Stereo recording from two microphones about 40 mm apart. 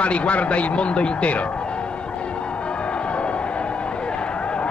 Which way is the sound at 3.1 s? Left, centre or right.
Left.